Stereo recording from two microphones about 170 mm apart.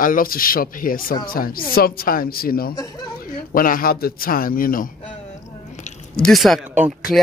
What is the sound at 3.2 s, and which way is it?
Speech, 55° left (ahead or behind).